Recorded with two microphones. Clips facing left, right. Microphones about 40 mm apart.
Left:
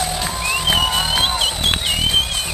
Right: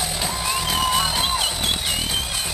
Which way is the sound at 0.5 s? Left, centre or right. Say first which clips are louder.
Left 4 dB; left.